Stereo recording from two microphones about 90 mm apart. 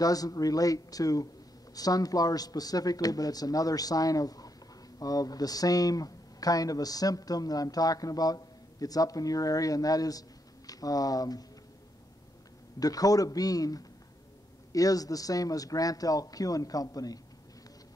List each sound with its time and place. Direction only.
0.0 s speech: 45° left (ahead or behind)
12.7 s speech: 45° left (ahead or behind)